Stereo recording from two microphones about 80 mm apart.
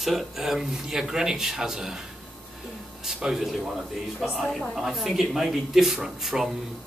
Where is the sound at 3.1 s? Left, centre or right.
Centre.